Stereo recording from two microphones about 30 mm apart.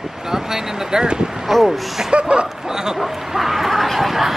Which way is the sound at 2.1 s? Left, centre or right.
Right.